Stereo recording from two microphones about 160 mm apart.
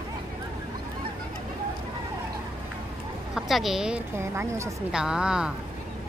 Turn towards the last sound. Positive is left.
turn(degrees=-5)  # may be behind; listen again after turning